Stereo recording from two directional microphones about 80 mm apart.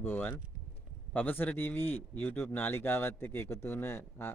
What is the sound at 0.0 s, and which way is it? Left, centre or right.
A man's voice, left.